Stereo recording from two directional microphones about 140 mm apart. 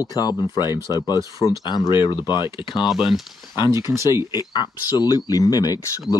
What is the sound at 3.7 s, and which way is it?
Speech, 20° right (ahead or behind).